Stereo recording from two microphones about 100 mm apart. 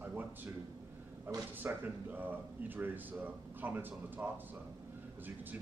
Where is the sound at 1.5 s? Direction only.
20° right (ahead or behind).